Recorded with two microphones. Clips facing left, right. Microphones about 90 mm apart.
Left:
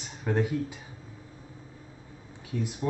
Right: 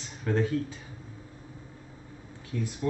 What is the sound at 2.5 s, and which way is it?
Speech, 20° left (ahead or behind).